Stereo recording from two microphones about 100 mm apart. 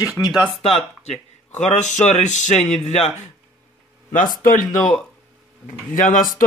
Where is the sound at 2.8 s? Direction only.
90° left.